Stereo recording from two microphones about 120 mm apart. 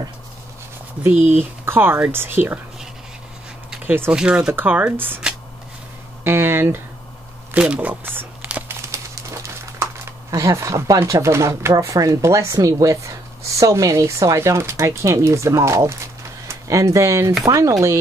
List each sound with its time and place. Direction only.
1.3 s speech: 15° right (ahead or behind)
3.7 s speech: 15° right (ahead or behind)
4.2 s speech: 5° right (ahead or behind)
7.5 s speech: 10° right (ahead or behind)
8.9 s speech: 25° right (ahead or behind)